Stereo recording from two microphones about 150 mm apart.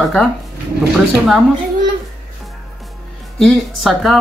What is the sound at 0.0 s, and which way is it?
Speech, 5° left (ahead or behind).